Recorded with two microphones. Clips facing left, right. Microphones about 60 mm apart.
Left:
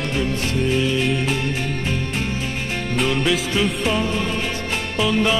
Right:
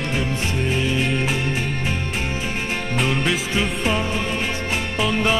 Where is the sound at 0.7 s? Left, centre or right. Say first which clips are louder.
Left 1 dB; centre.